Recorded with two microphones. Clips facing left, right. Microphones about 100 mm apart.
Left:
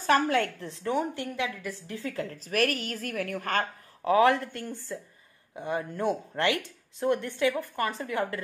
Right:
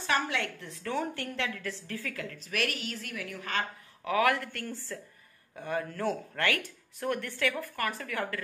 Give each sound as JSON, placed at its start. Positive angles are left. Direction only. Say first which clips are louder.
{"t": 0.0, "sound": "a woman's voice", "louder": "left 7 dB", "side_deg": 45}
{"t": 0.7, "sound": "a woman's voice", "louder": "left 4 dB", "side_deg": 25}
{"t": 2.1, "sound": "a woman's voice", "louder": "left 8 dB", "side_deg": 35}
{"t": 4.0, "sound": "speech", "louder": "left 5 dB", "side_deg": 30}